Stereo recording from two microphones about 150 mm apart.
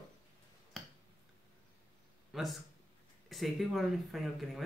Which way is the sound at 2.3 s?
Centre (ahead or behind).